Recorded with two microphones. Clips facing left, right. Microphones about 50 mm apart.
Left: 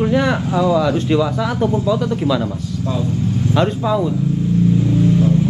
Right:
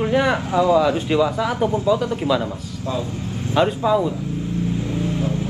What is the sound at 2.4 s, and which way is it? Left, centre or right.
Speech, right.